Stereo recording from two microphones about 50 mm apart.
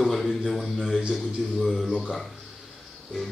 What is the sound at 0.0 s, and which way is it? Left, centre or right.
A man's voice, centre.